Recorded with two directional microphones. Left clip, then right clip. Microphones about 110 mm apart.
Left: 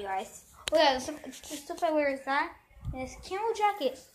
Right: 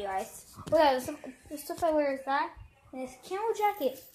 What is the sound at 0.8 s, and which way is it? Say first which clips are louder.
A woman's voice: even; 20° right (ahead or behind).